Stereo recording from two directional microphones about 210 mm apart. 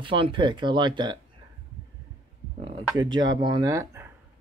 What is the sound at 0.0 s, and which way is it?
Speech, 25° right (ahead or behind).